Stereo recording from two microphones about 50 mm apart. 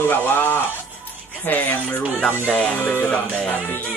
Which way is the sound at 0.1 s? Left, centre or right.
Left.